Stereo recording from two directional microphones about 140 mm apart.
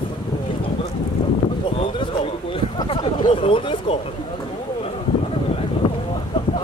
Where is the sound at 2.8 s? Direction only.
30° left (ahead or behind).